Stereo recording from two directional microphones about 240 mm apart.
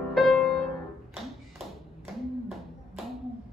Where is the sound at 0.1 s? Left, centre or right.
Centre.